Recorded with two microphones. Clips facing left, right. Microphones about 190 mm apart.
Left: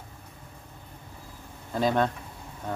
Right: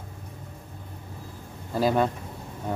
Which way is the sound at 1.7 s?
5° right (ahead or behind).